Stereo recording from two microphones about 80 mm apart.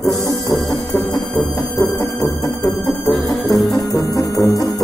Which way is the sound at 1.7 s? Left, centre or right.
Left.